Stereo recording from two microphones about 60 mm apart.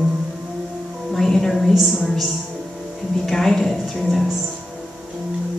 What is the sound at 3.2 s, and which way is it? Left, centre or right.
Speech, centre.